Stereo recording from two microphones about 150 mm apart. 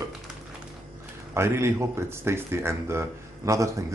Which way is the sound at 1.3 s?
15° right (ahead or behind).